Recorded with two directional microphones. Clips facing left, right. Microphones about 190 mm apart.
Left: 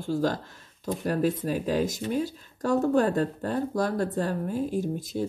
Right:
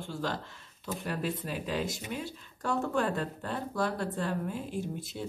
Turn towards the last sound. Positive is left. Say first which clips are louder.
# left 8 dB
turn(degrees=40)  # may be behind; listen again after turning